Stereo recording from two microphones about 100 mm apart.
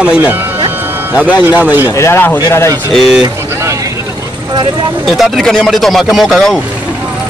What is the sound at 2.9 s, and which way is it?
Speech, 5° right (ahead or behind).